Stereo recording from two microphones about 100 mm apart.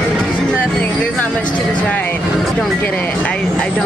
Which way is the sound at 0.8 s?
15° left (ahead or behind).